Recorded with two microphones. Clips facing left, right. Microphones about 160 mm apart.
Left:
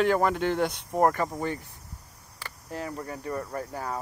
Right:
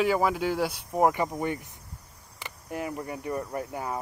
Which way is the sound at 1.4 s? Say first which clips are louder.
Right 1 dB; 15° right (ahead or behind).